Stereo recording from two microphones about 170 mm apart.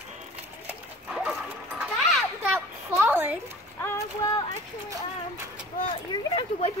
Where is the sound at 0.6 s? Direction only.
5° right (ahead or behind).